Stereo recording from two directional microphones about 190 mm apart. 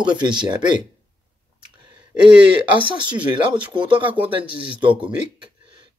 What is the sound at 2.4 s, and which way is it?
Speech, 25° right (ahead or behind).